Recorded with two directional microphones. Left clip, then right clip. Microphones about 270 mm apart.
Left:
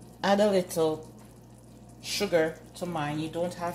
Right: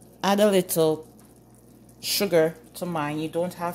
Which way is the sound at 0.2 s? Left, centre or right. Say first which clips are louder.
Right 3 dB; right.